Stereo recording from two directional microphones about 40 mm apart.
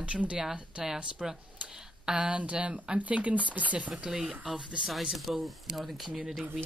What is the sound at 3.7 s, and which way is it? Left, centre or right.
Speech, right.